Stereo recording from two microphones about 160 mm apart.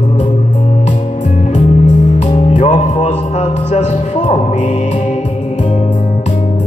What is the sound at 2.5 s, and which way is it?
Music, 45° left (ahead or behind).